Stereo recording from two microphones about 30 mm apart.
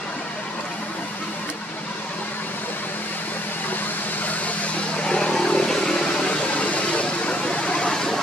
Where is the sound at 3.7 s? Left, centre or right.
Left.